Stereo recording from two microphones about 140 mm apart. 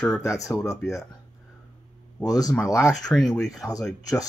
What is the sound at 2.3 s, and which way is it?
Speech, 25° left (ahead or behind).